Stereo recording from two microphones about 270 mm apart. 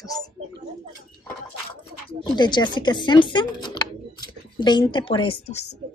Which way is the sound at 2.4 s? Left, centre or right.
Centre.